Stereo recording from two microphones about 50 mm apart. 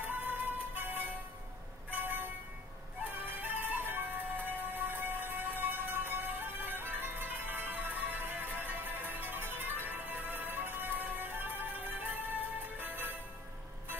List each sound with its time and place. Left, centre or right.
0.0 s music: right